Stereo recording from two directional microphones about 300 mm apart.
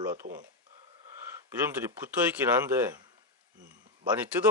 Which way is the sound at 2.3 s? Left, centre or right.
Centre.